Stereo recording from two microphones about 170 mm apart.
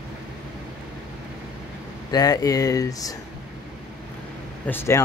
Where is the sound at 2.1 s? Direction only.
20° left (ahead or behind).